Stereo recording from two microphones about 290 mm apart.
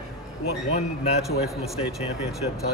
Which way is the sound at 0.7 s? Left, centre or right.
Left.